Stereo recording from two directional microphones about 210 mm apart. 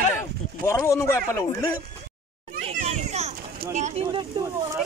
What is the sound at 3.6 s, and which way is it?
Speech, 35° right (ahead or behind).